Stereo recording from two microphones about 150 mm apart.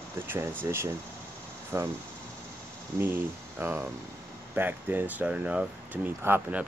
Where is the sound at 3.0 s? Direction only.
15° right (ahead or behind).